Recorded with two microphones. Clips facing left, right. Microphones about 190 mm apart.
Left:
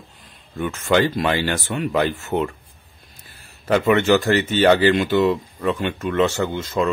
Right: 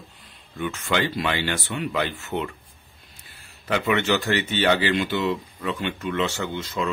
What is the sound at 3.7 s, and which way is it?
Speech, 45° left (ahead or behind).